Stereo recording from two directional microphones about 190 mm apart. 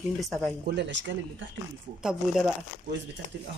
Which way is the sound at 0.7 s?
65° right (ahead or behind).